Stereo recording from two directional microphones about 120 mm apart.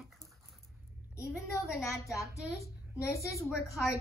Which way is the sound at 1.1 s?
25° left (ahead or behind).